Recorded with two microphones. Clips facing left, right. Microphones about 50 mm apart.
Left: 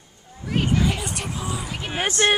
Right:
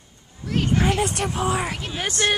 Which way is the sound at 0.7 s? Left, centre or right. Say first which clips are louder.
Right 3 dB; right.